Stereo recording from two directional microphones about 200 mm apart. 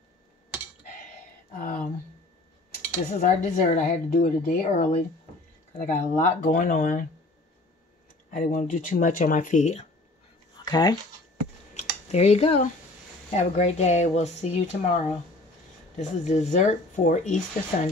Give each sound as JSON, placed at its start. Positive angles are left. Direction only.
{"t": 1.6, "sound": "a sound", "side_deg": 40}
{"t": 3.1, "sound": "a woman's voice", "side_deg": 35}
{"t": 8.3, "sound": "a woman's voice", "side_deg": 40}
{"t": 10.6, "sound": "speech", "side_deg": 20}
{"t": 11.7, "sound": "a sound", "side_deg": 30}
{"t": 13.3, "sound": "a woman's voice", "side_deg": 35}